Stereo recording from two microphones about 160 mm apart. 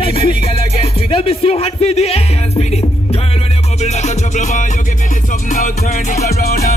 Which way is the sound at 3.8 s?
45° left (ahead or behind).